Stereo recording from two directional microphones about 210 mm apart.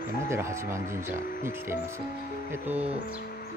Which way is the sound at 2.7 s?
30° right (ahead or behind).